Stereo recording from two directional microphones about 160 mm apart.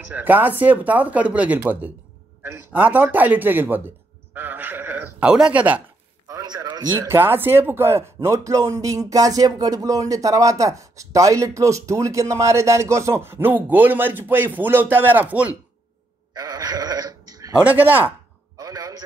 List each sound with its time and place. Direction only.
0.1 s a man's voice: 10° right (ahead or behind)
6.2 s a sound: 25° right (ahead or behind)
7.0 s a man's voice: 15° right (ahead or behind)
16.3 s sheep: 25° right (ahead or behind)
17.6 s speech: 10° right (ahead or behind)
18.6 s a sound: 20° right (ahead or behind)